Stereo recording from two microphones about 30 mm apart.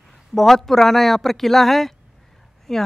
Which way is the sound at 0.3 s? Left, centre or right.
Centre.